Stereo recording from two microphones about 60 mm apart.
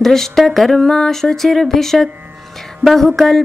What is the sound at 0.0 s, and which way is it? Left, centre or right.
Mantra, centre.